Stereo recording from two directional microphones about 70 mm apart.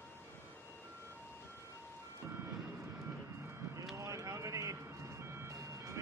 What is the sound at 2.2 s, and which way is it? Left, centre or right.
Vehicle, right.